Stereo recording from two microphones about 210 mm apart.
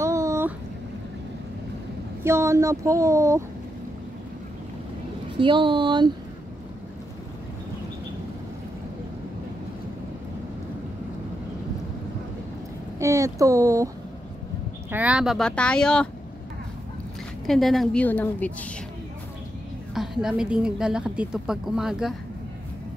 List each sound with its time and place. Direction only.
0.0 s a sound: 15° right (ahead or behind)
2.2 s speech: 15° right (ahead or behind)
5.4 s speech: 25° right (ahead or behind)
13.0 s speech: 15° right (ahead or behind)
14.9 s a woman's voice: 5° right (ahead or behind)
17.5 s a woman's voice: centre (ahead or behind)
19.9 s a woman's voice: centre (ahead or behind)